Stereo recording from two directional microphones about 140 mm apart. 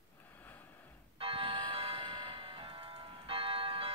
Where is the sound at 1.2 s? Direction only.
40° right (ahead or behind).